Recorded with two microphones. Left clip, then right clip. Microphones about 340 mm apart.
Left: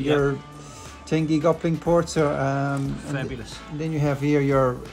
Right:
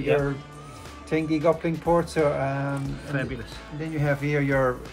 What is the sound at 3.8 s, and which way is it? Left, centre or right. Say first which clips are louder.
Speech: left 2 dB; left.